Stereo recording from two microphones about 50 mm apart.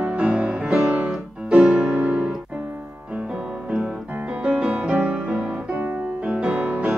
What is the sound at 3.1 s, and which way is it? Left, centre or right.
Music, right.